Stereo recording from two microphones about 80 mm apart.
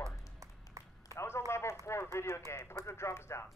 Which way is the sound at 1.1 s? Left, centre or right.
Left.